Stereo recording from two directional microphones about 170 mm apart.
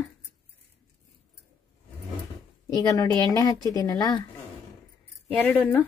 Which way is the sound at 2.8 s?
20° left (ahead or behind).